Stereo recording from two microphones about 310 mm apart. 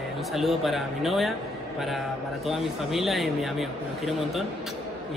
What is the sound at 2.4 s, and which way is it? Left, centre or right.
Speech, centre.